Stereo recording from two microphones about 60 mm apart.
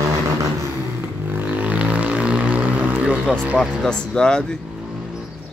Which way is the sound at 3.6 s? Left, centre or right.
Centre.